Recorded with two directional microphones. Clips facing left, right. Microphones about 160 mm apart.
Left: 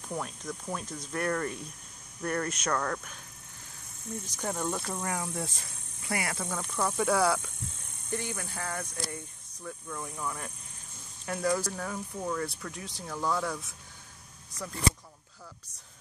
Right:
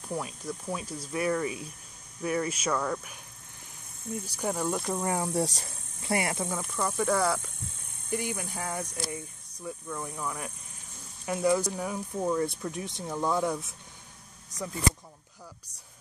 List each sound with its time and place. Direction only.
0.1 s speech: 5° right (ahead or behind)
4.4 s speech: 10° right (ahead or behind)
5.0 s speech: 30° right (ahead or behind)
6.5 s speech: 5° right (ahead or behind)
8.1 s speech: 15° right (ahead or behind)